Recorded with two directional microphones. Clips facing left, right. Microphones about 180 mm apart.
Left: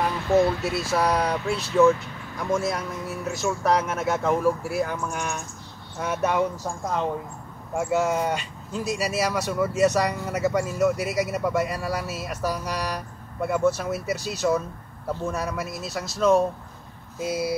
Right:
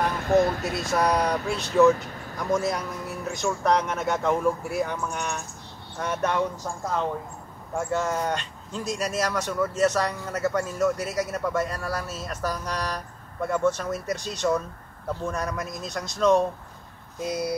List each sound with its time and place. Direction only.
0.1 s speech: 50° right (ahead or behind)
0.8 s speech: centre (ahead or behind)